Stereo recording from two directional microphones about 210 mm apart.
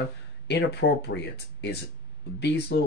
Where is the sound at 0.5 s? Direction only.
55° left (ahead or behind).